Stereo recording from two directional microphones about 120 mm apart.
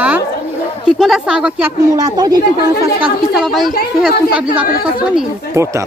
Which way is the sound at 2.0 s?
30° right (ahead or behind).